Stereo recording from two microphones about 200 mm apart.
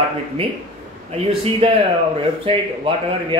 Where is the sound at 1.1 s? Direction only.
25° right (ahead or behind).